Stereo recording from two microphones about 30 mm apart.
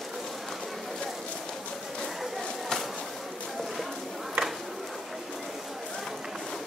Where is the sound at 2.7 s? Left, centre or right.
Centre.